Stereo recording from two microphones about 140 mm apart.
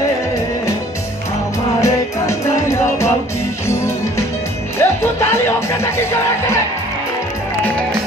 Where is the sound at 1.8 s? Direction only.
20° left (ahead or behind).